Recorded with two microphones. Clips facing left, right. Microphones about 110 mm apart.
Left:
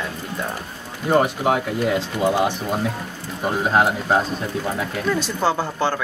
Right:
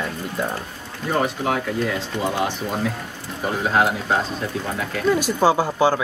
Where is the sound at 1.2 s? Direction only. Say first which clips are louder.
Left 3 dB; 15° left (ahead or behind).